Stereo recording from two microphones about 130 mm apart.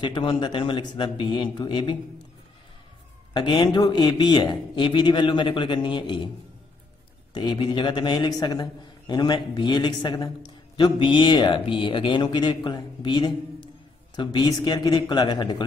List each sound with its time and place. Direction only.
0.0 s a man's voice: 40° left (ahead or behind)
3.3 s a man's voice: 35° left (ahead or behind)
7.3 s a man's voice: 35° left (ahead or behind)